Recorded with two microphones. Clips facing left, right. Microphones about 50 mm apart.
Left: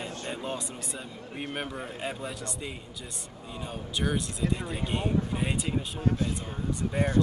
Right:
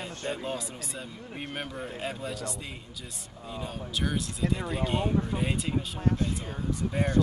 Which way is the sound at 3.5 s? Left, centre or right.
Centre.